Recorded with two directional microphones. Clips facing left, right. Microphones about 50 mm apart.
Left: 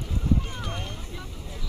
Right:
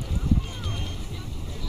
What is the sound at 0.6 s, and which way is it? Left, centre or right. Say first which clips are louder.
Vehicle: left 1 dB; centre.